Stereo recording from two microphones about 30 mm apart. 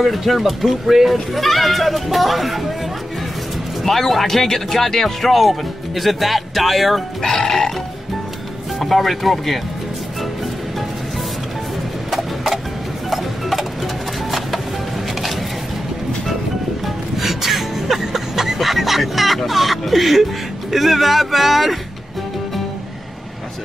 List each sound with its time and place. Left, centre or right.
0.0 s speech: centre
3.8 s speech: centre
7.2 s speech: left
8.7 s speech: centre
12.1 s a sound: centre
13.1 s tick-tock: centre
16.8 s music: centre
18.6 s music: centre
20.7 s speech: centre